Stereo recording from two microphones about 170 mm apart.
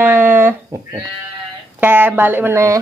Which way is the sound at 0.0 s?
10° right (ahead or behind).